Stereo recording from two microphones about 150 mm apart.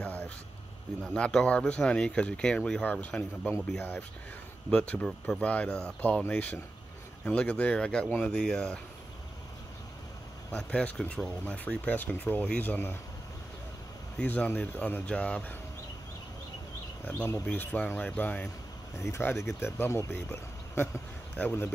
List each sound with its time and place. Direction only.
0.0 s a sound: 10° left (ahead or behind)
1.0 s speech: 5° left (ahead or behind)
10.5 s speech: 10° left (ahead or behind)
14.1 s speech: 10° left (ahead or behind)
17.0 s speech: 15° left (ahead or behind)